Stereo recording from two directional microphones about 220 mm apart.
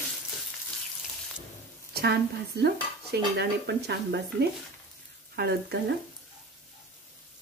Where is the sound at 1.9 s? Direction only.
45° right (ahead or behind).